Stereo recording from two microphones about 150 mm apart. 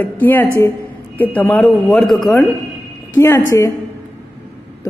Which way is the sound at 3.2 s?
20° left (ahead or behind).